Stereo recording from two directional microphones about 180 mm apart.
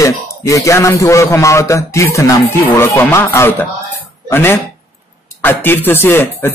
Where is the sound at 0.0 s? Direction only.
15° left (ahead or behind).